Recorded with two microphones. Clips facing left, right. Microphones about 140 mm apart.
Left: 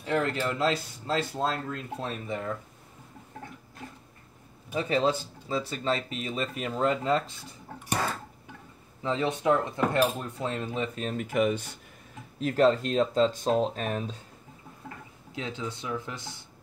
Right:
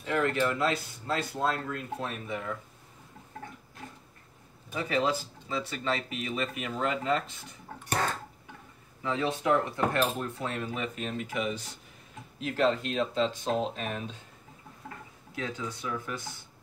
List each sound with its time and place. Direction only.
0.0 s speech: 30° left (ahead or behind)
4.7 s speech: 25° left (ahead or behind)
7.8 s a sound: 5° left (ahead or behind)
9.0 s speech: 20° left (ahead or behind)
11.0 s speech: 45° left (ahead or behind)
12.4 s speech: 40° left (ahead or behind)
15.3 s speech: 25° left (ahead or behind)